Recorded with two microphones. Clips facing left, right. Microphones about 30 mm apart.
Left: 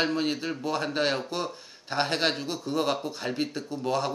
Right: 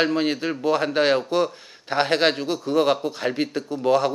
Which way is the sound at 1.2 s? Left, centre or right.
Centre.